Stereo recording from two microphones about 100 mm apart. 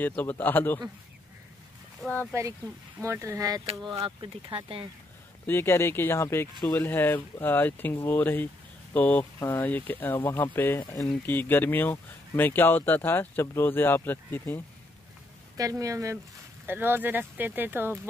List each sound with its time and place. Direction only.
0.0 s speech: 20° left (ahead or behind)
3.0 s speech: 30° right (ahead or behind)
4.2 s speech: 60° right (ahead or behind)
5.5 s speech: 25° left (ahead or behind)
10.9 s speech: 35° left (ahead or behind)
11.2 s speech: 20° left (ahead or behind)
15.5 s speech: 35° right (ahead or behind)
16.6 s speech: 20° right (ahead or behind)